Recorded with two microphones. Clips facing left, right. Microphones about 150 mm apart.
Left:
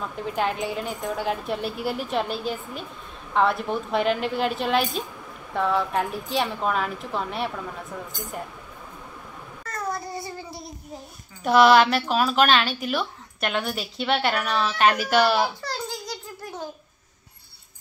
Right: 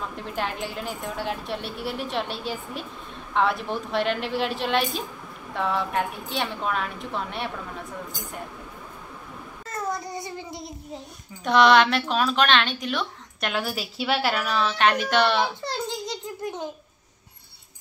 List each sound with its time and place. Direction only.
0.0 s a woman's voice: centre (ahead or behind)
9.7 s child singing: 20° right (ahead or behind)
11.4 s a woman's voice: 5° left (ahead or behind)
15.6 s a sound: 25° right (ahead or behind)